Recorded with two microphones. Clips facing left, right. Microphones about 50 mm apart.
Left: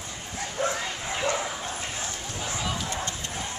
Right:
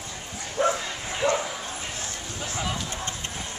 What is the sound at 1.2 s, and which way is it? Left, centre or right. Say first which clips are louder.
Bow-wow: right 4 dB; centre.